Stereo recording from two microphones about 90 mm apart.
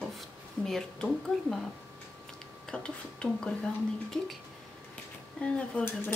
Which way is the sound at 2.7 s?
10° left (ahead or behind).